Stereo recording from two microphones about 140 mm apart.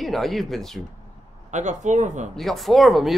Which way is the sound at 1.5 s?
60° right (ahead or behind).